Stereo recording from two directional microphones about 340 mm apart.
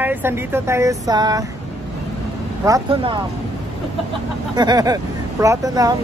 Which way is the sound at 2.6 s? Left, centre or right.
Centre.